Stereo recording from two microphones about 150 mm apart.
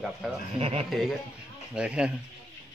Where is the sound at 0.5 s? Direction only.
40° right (ahead or behind).